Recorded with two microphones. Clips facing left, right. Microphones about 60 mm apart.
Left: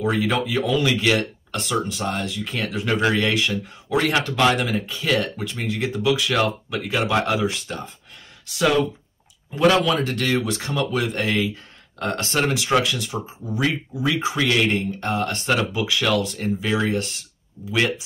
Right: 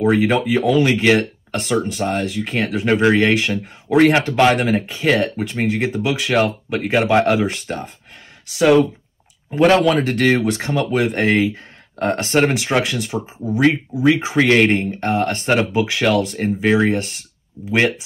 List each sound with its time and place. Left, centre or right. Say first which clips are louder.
0.0 s speech: right 6 dB; right